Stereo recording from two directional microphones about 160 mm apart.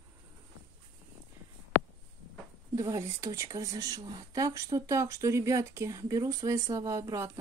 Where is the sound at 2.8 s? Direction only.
20° right (ahead or behind).